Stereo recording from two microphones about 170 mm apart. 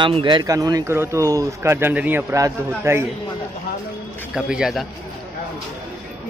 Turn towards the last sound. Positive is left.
turn(degrees=-5)  # may be behind; listen again after turning